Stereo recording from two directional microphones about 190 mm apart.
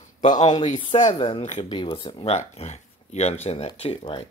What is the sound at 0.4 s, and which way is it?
Speech, 25° left (ahead or behind).